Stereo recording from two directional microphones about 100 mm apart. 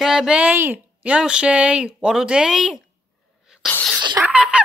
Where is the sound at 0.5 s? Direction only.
20° right (ahead or behind); by 2.8 s 5° right (ahead or behind).